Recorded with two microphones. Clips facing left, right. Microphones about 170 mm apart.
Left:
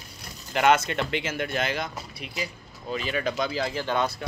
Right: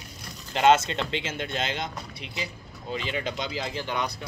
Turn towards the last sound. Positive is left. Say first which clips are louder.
# left 4 dB
turn(degrees=-15)  # may be behind; listen again after turning